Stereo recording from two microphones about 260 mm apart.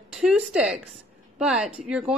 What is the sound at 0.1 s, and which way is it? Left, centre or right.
A woman's voice, centre.